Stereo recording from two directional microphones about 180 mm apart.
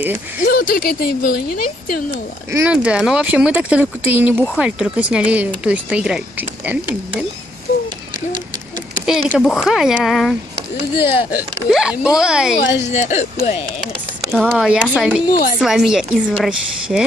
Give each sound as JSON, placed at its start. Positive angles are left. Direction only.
{"t": 0.4, "sound": "speech", "side_deg": 50}
{"t": 2.5, "sound": "speech", "side_deg": -10}
{"t": 9.0, "sound": "speech", "side_deg": -5}
{"t": 9.3, "sound": "speech", "side_deg": 10}
{"t": 9.6, "sound": "speech", "side_deg": 0}
{"t": 12.8, "sound": "speech", "side_deg": 40}
{"t": 14.5, "sound": "speech", "side_deg": 0}